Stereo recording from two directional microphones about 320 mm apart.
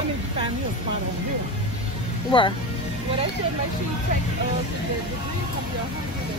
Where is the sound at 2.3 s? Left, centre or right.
Centre.